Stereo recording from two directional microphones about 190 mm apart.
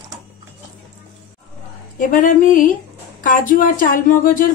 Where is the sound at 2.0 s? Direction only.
45° left (ahead or behind).